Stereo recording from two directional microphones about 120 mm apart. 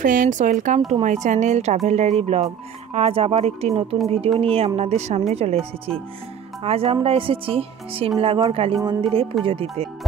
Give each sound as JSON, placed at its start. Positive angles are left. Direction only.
{"t": 0.0, "sound": "a woman's voice", "side_deg": -90}
{"t": 4.7, "sound": "a woman's voice", "side_deg": -65}